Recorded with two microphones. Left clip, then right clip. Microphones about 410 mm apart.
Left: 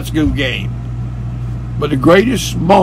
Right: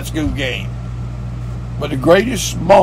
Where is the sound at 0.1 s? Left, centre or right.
Centre.